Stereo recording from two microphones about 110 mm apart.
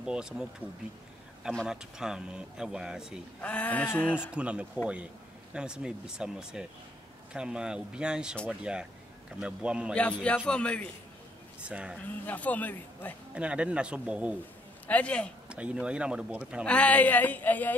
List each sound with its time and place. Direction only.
0.0 s speech: 5° right (ahead or behind)
1.7 s speech: 5° right (ahead or behind)
3.3 s speech: 15° left (ahead or behind)
4.3 s speech: 10° right (ahead or behind)
10.2 s speech: 10° left (ahead or behind)
11.6 s speech: 10° right (ahead or behind)
12.3 s speech: 15° left (ahead or behind)
13.3 s speech: 10° right (ahead or behind)
14.9 s speech: 10° left (ahead or behind)
15.5 s speech: 10° right (ahead or behind)
16.6 s speech: 10° left (ahead or behind)